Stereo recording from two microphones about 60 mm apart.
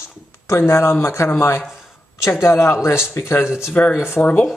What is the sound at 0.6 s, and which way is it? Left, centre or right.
Speech, left.